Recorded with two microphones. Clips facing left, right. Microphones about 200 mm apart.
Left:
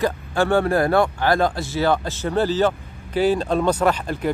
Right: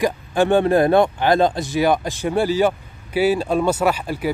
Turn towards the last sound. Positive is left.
turn(degrees=-5)  # may be behind; listen again after turning